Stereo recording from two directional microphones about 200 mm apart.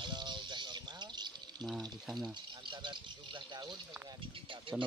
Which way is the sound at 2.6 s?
25° right (ahead or behind).